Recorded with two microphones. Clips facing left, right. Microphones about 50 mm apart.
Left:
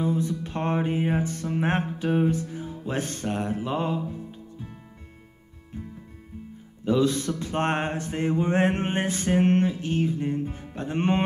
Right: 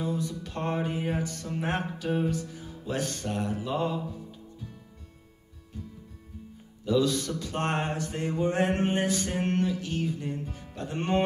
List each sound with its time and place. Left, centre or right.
0.0 s music: left
6.8 s music: left